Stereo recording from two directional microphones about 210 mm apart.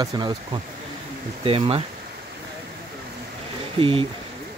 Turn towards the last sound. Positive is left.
turn(degrees=-25)  # may be behind; listen again after turning